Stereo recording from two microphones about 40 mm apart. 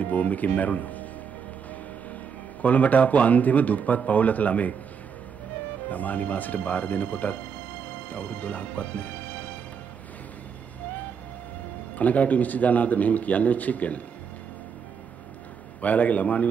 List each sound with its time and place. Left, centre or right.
0.0 s speech: left
2.6 s speech: left
5.9 s speech: left
11.9 s speech: left
15.8 s speech: left